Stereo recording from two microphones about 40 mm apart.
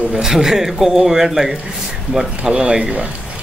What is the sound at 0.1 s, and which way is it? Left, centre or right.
Speech, centre.